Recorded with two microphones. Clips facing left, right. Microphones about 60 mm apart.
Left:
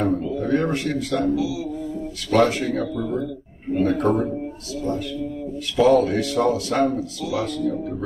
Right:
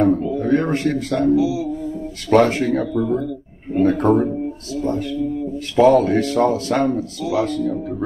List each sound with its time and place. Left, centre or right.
0.0 s speech: right
5.8 s a man's voice: right